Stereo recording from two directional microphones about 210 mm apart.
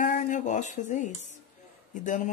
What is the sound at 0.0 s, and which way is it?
Speech, 35° left (ahead or behind).